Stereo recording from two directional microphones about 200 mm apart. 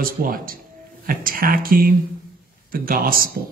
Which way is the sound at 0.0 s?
45° right (ahead or behind).